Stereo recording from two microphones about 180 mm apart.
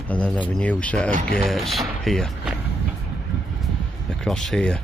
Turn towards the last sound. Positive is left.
turn(degrees=5)  # may be behind; listen again after turning